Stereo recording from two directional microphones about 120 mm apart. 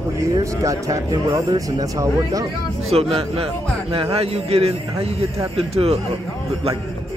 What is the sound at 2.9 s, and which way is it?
A man's voice, 60° right (ahead or behind).